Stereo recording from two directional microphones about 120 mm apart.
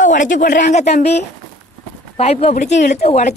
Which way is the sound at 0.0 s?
90° left.